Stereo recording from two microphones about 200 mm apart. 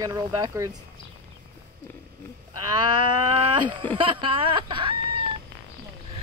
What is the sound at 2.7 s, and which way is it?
Speech, 20° right (ahead or behind).